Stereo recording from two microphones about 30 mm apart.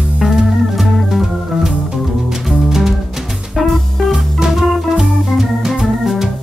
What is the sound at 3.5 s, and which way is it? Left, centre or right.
Music, centre.